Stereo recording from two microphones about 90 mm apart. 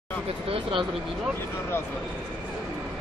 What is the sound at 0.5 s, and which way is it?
Speech, 70° right (ahead or behind).